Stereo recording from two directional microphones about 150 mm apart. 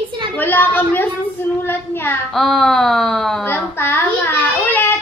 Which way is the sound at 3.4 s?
15° left (ahead or behind).